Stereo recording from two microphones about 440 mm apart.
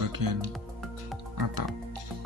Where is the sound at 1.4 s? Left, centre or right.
Right.